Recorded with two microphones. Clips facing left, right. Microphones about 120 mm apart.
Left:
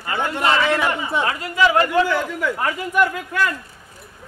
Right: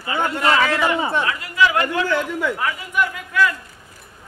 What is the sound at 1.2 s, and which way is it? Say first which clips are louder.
A man's voice: left 1 dB; 35° left (ahead or behind).